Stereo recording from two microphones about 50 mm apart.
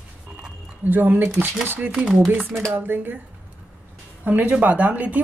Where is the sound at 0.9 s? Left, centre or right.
Right.